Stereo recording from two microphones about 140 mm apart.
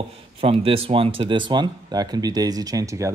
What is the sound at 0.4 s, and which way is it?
Speech, 40° right (ahead or behind).